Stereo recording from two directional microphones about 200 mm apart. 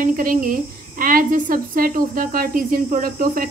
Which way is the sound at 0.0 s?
45° right (ahead or behind).